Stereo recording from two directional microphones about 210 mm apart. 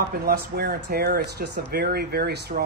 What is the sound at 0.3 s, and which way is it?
A man's voice, 45° right (ahead or behind).